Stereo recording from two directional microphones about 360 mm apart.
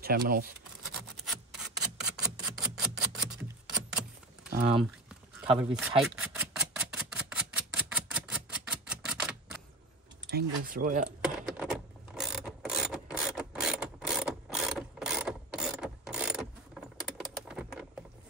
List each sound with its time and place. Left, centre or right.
0.0 s speech: right
0.9 s a sound: centre
4.5 s speech: centre
5.6 s speech: centre
6.1 s typewriter: centre
10.3 s speech: right
11.1 s mechanisms: centre
17.0 s typing: centre